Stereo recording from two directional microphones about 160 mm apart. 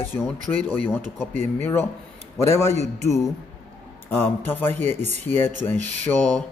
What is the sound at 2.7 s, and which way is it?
Speech, 45° right (ahead or behind).